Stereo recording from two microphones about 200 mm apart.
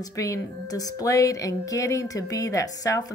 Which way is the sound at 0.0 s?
15° left (ahead or behind).